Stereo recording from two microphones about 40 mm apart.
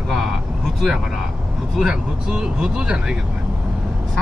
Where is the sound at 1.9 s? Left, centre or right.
Centre.